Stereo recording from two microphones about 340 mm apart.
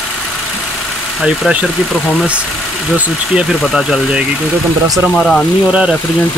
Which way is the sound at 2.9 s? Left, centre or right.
Centre.